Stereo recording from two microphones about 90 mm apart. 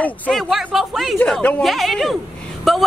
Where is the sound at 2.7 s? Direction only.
Centre (ahead or behind).